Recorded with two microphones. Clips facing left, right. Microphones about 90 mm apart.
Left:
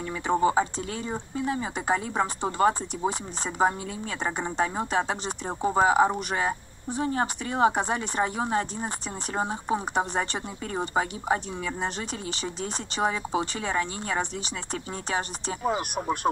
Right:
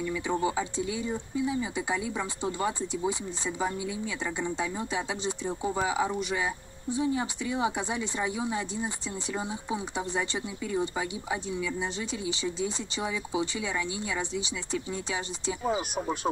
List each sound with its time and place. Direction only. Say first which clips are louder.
0.1 s speech: left 8 dB; 50° left (ahead or behind)
0.7 s speech: right 1 dB; 65° left (ahead or behind)
5.5 s speech: left 9 dB; 45° left (ahead or behind)